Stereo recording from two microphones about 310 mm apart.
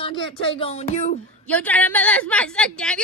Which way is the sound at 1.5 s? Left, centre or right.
Centre.